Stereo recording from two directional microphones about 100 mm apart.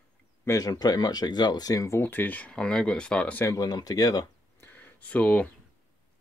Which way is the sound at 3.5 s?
40° left (ahead or behind).